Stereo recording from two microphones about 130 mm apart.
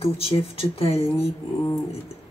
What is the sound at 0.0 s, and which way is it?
Speech, 50° left (ahead or behind).